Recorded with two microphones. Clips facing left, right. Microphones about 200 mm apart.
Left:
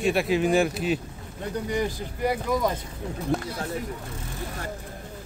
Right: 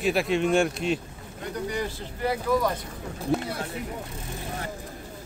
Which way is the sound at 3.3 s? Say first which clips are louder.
Right 2 dB; centre (ahead or behind).